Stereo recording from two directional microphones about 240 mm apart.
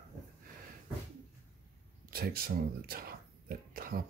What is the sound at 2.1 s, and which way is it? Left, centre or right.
Speech, right.